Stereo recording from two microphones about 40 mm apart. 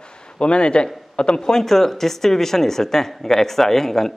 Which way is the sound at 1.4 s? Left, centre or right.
Centre.